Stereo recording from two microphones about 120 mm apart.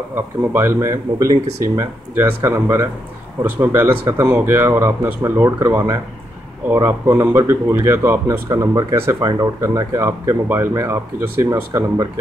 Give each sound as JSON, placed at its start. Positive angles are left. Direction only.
{"t": 0.1, "sound": "speech", "side_deg": -20}